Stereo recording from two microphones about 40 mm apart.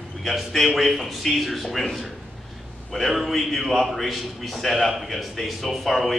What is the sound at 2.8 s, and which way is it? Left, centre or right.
A man's voice, centre.